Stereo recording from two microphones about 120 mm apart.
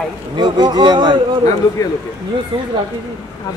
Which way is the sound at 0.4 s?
35° right (ahead or behind).